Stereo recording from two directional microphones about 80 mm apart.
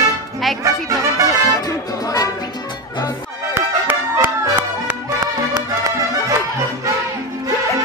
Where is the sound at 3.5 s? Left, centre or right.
Right.